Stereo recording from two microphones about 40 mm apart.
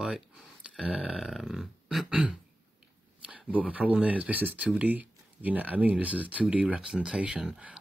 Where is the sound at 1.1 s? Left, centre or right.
Centre.